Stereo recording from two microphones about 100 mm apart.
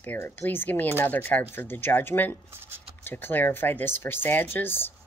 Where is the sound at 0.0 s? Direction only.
20° left (ahead or behind).